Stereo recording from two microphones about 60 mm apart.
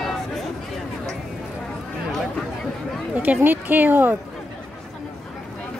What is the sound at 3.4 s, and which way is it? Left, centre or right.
Speech, right.